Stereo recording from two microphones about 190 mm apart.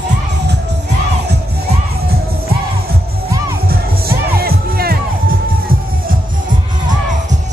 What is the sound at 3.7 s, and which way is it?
Music, 50° right (ahead or behind).